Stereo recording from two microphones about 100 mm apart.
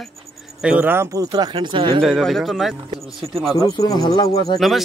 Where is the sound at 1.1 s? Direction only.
45° right (ahead or behind).